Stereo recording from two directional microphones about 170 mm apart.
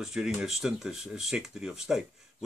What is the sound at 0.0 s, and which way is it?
Speech, 5° right (ahead or behind).